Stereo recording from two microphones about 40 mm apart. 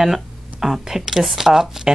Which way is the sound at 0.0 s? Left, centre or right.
Centre.